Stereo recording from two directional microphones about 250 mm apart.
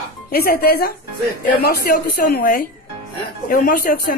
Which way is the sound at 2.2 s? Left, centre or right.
Left.